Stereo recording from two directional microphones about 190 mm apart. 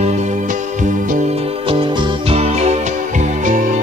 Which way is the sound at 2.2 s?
35° right (ahead or behind).